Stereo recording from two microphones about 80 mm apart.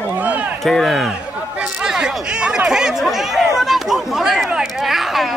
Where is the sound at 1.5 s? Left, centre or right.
Centre.